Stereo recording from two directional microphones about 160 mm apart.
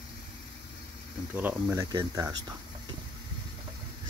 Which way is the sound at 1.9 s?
20° right (ahead or behind).